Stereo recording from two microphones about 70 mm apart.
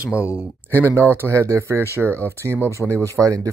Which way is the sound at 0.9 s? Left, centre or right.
Right.